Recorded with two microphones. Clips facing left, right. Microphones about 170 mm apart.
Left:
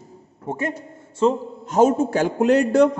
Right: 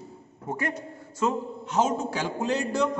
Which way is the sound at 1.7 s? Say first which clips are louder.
Left 9 dB; 50° left (ahead or behind).